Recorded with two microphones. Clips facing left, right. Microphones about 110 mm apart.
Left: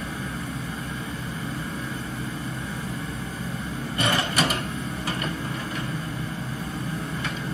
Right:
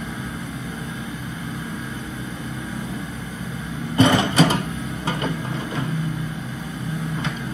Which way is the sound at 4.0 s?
25° right (ahead or behind).